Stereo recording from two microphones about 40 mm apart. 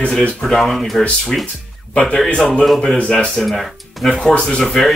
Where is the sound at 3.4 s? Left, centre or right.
Centre.